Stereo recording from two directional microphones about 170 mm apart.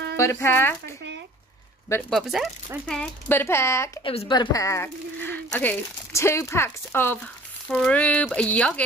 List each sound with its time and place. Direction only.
0.2 s speech: 15° left (ahead or behind)
2.0 s speech: centre (ahead or behind)
3.0 s speech: 15° left (ahead or behind)
4.0 s speech: 35° left (ahead or behind)
4.3 s speech: 25° left (ahead or behind)
4.8 s speech: 10° left (ahead or behind)